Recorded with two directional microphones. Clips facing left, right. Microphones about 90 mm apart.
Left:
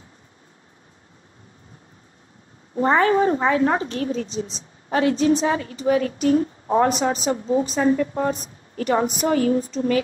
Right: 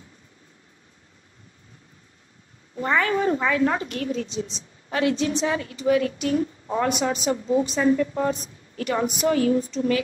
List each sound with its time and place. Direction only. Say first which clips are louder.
2.7 s a woman's voice: left 5 dB; 35° left (ahead or behind)